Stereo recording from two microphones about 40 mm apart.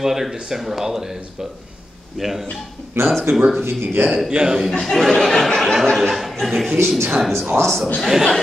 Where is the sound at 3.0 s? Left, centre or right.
Right.